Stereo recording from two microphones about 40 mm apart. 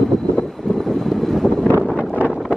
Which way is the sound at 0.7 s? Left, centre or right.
Centre.